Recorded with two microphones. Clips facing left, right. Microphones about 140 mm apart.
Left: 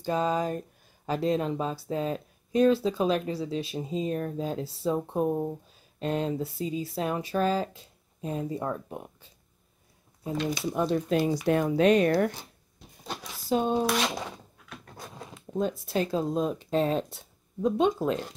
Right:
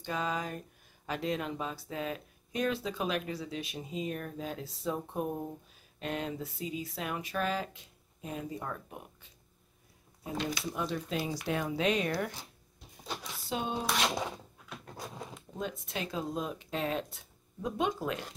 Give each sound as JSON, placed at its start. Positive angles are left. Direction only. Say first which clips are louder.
{"t": 0.0, "sound": "speech", "louder": "left 8 dB", "side_deg": 35}
{"t": 10.5, "sound": "speech", "louder": "left 6 dB", "side_deg": 25}
{"t": 10.8, "sound": "speech", "louder": "left 10 dB", "side_deg": 50}
{"t": 13.5, "sound": "speech", "louder": "left 9 dB", "side_deg": 40}
{"t": 13.8, "sound": "a sound", "louder": "left 4 dB", "side_deg": 0}
{"t": 15.5, "sound": "speech", "louder": "left 11 dB", "side_deg": 35}